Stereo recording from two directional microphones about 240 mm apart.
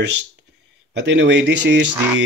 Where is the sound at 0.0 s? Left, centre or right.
Right.